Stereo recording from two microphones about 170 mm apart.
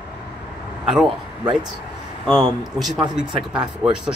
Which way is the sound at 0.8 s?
5° right (ahead or behind).